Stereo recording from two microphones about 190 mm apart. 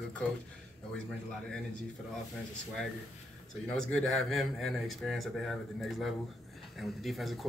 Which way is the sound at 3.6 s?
5° left (ahead or behind).